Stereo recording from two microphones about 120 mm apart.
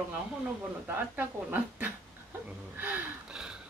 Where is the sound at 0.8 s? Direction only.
15° right (ahead or behind).